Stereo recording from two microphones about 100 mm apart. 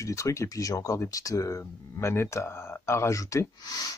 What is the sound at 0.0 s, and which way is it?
Speech, 30° left (ahead or behind).